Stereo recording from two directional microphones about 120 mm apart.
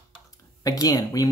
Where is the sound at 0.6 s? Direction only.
30° left (ahead or behind).